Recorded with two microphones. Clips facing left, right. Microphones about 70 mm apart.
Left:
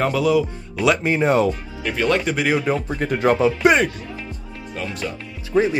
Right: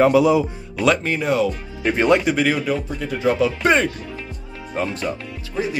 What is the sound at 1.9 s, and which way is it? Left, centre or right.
Speech, right.